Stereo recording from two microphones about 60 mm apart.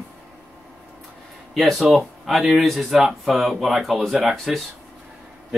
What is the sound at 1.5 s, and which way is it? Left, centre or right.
Speech, centre.